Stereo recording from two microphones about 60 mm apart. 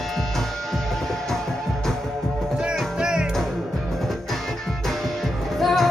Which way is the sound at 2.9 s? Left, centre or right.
Centre.